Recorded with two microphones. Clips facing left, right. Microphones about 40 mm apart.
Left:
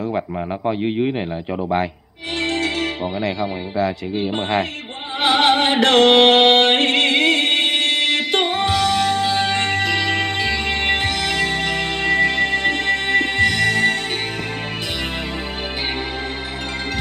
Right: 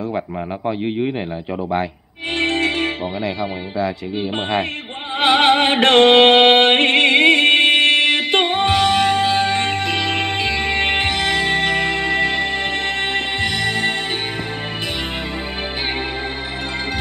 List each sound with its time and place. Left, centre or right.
0.7 s a man's voice: centre
2.3 s music: right
5.2 s music: right